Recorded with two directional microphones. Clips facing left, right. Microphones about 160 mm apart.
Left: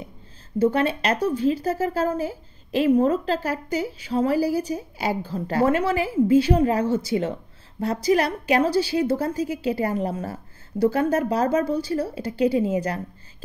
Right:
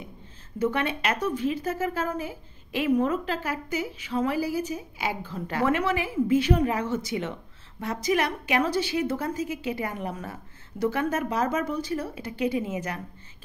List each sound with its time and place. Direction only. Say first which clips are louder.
0.6 s a woman's voice: left 6 dB; 35° left (ahead or behind)